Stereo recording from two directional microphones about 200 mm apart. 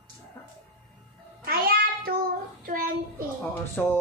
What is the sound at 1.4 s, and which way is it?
Music, 50° right (ahead or behind).